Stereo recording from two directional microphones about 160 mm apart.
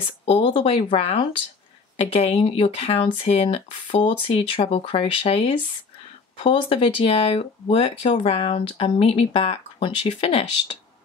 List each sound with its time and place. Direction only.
0.2 s speech: 40° left (ahead or behind)